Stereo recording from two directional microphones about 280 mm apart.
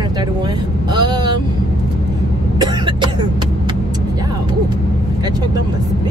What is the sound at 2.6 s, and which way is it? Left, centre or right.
Cough, centre.